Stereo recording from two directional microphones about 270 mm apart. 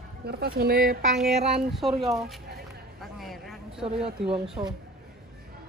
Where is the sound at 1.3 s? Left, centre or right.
Right.